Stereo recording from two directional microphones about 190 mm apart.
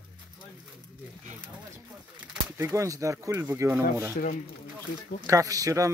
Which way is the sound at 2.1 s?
10° right (ahead or behind).